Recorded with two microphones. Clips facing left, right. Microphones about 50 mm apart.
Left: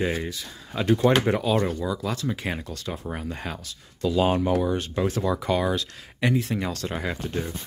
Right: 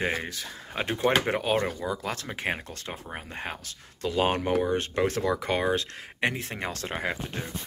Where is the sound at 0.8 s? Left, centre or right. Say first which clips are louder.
Left 6 dB; right.